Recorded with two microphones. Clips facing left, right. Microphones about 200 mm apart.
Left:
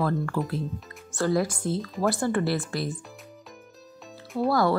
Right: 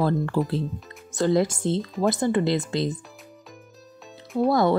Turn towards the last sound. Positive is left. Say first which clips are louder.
# right 3 dB
turn(degrees=-20)  # may be behind; listen again after turning